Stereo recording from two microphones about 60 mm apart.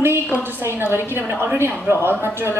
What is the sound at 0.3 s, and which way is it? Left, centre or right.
A woman's voice, right.